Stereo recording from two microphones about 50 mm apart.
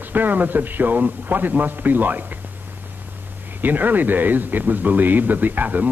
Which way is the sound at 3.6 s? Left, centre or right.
Right.